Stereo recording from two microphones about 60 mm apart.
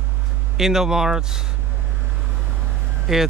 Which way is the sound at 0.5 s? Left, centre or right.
Centre.